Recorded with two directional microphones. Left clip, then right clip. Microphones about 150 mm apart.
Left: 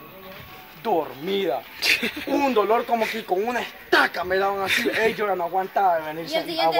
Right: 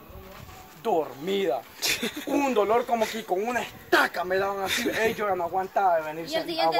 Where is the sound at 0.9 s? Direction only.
15° right (ahead or behind).